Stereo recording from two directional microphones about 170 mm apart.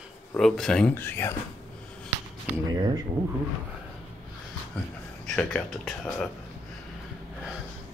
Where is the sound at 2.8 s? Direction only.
25° right (ahead or behind).